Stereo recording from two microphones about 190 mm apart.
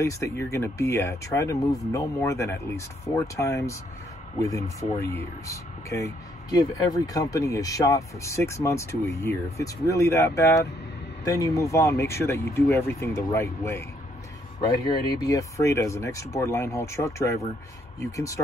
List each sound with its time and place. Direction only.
0.0 s speech: 15° left (ahead or behind)